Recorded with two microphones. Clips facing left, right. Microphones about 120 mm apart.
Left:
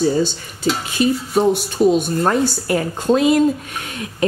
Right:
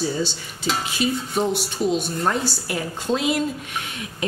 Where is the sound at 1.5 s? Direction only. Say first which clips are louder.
Left 7 dB; 50° left (ahead or behind).